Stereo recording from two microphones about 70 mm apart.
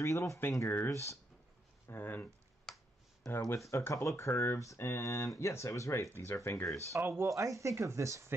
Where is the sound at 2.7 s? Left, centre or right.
Centre.